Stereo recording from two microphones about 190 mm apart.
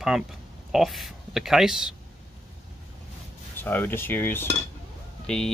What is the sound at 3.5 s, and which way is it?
Cutlery, 10° left (ahead or behind).